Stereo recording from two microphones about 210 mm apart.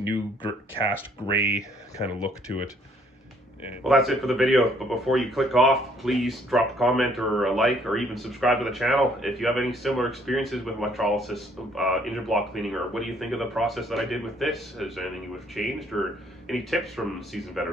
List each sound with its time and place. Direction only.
1.2 s speech: 30° left (ahead or behind)
2.0 s speech: 5° right (ahead or behind)
3.6 s speech: centre (ahead or behind)